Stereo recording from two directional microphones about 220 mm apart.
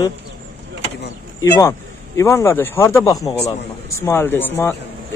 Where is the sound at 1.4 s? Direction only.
15° left (ahead or behind).